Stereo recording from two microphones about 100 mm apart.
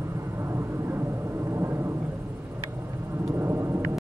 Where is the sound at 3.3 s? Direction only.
25° right (ahead or behind).